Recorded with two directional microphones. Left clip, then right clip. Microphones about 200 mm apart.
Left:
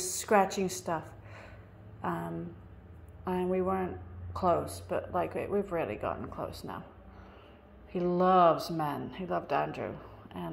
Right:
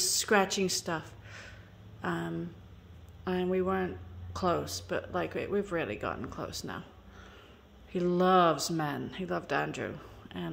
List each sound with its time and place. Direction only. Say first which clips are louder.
0.0 s a sound: even; 25° right (ahead or behind)
2.0 s speech: right 1 dB; 30° right (ahead or behind)
7.9 s speech: even; 30° right (ahead or behind)